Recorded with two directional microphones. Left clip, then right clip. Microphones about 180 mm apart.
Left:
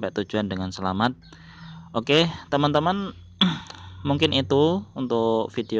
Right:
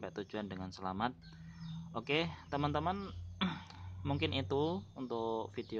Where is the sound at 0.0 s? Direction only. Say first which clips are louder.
Left 16 dB; 30° left (ahead or behind).